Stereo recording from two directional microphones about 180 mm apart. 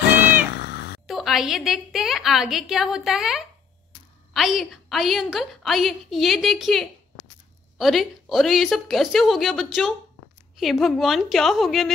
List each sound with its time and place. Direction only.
0.0 s meow: 60° left (ahead or behind)
1.0 s a woman's voice: centre (ahead or behind)